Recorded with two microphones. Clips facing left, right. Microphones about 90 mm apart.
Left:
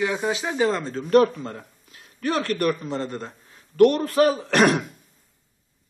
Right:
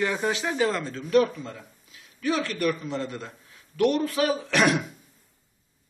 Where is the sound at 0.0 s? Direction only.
10° left (ahead or behind); by 1.0 s 30° left (ahead or behind).